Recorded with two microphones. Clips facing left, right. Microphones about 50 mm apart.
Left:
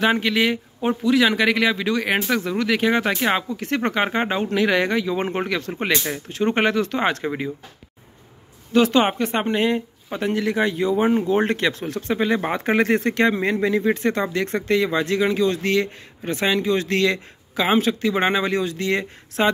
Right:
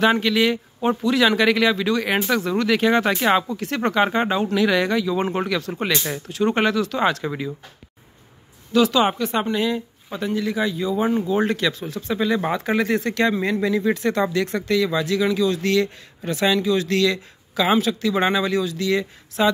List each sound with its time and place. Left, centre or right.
0.0 s speech: centre
3.6 s speech: left
8.7 s speech: left